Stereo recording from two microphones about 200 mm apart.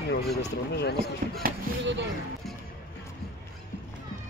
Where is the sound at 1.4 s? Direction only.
65° right (ahead or behind).